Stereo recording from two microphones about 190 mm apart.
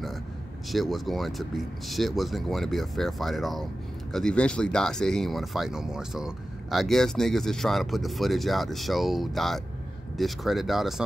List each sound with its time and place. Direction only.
0.7 s speech: centre (ahead or behind)